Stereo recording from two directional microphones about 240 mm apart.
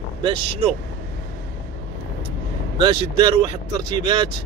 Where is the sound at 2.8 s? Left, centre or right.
Centre.